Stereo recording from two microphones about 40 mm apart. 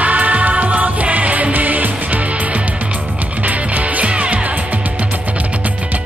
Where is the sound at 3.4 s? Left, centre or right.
Right.